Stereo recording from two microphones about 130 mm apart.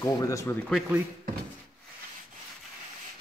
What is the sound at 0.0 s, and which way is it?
Speech, 25° left (ahead or behind).